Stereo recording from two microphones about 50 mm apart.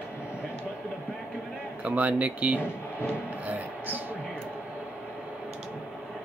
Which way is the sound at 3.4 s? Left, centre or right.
Right.